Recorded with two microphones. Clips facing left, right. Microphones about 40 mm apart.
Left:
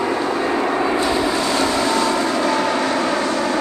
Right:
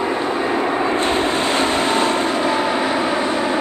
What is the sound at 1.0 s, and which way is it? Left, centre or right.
Vehicle, right.